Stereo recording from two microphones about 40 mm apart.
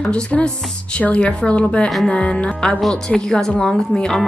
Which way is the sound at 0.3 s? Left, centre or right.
Left.